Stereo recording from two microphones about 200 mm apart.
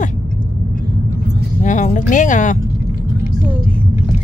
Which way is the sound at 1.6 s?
40° left (ahead or behind).